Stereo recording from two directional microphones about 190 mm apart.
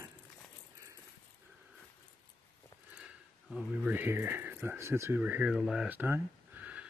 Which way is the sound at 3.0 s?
5° right (ahead or behind).